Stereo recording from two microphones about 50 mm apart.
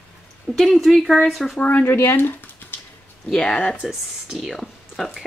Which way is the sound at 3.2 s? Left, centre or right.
Centre.